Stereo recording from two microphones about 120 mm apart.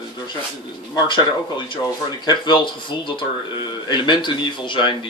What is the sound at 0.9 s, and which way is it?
Speech, 40° left (ahead or behind).